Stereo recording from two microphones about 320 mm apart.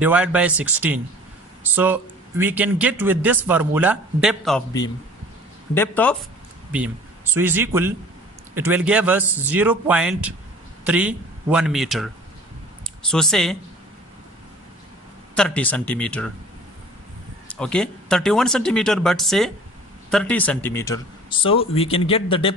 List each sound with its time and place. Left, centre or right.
0.0 s a man's voice: centre
5.8 s a man's voice: centre
6.7 s a man's voice: centre
15.3 s a man's voice: centre
17.5 s a man's voice: centre